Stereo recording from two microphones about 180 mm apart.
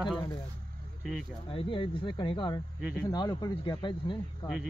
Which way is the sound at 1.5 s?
30° left (ahead or behind).